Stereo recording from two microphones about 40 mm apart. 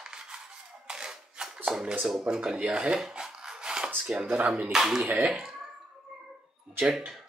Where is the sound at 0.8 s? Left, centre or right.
Centre.